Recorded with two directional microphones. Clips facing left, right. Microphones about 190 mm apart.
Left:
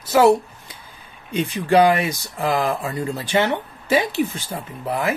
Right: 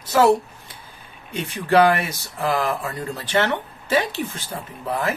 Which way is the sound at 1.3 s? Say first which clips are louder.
Left 1 dB; 15° left (ahead or behind).